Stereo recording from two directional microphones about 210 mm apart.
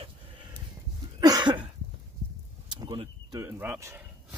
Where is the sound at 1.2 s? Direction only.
20° right (ahead or behind).